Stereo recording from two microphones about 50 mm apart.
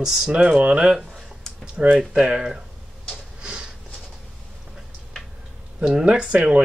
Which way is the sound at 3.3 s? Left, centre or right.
Centre.